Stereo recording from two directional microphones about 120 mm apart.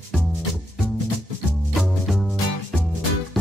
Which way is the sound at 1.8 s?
Centre (ahead or behind).